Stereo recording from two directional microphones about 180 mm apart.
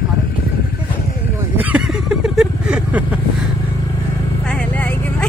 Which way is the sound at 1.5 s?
5° right (ahead or behind).